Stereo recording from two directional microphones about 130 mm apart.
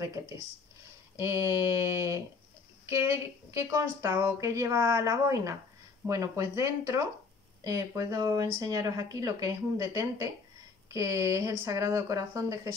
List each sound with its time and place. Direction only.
1.1 s a woman's voice: 20° right (ahead or behind)